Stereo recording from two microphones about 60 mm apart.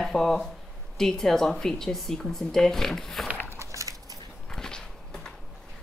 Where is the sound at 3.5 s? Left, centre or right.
Right.